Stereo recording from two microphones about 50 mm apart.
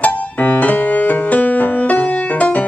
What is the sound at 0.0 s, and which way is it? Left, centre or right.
Music, left.